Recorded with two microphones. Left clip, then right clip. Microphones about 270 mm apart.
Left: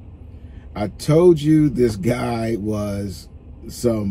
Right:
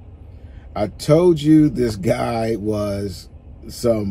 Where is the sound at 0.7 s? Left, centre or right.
Centre.